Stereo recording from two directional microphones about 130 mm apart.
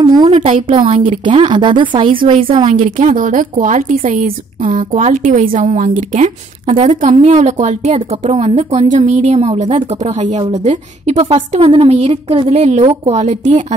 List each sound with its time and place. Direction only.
0.0 s a sound: 35° right (ahead or behind)
0.3 s a woman's voice: 45° right (ahead or behind)
2.7 s a woman's voice: 75° right (ahead or behind); by 13.2 s 55° right (ahead or behind)
13.2 s a woman's voice: 65° right (ahead or behind)